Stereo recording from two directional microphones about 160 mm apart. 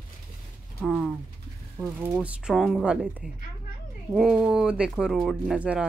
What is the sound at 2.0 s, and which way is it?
Speech, 10° right (ahead or behind).